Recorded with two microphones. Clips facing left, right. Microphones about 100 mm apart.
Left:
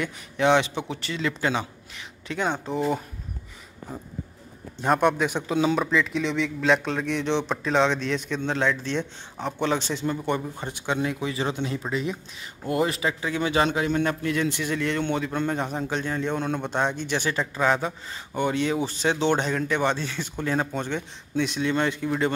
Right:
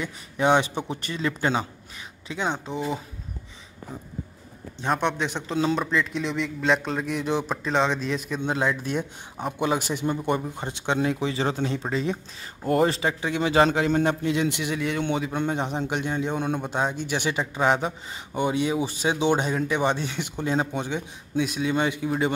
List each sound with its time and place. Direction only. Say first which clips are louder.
1.1 s a man's voice: right 1 dB; 30° right (ahead or behind)
2.3 s speech: left 2 dB; centre (ahead or behind)
4.7 s a man's voice: left 4 dB; 5° left (ahead or behind); by 14.0 s 35° right (ahead or behind)
14.0 s a man's voice: right 2 dB; 20° right (ahead or behind)